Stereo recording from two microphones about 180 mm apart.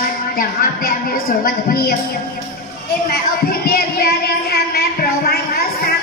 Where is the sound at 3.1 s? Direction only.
55° left (ahead or behind).